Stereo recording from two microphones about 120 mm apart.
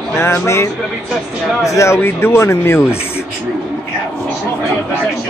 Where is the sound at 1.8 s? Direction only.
20° left (ahead or behind).